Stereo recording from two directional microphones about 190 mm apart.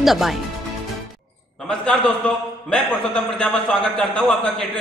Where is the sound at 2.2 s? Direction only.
5° left (ahead or behind).